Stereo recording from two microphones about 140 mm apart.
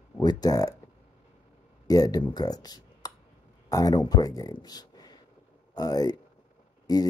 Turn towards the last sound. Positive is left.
turn(degrees=25)  # may be behind; listen again after turning